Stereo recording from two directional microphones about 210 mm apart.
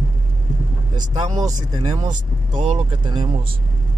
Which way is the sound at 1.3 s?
20° right (ahead or behind).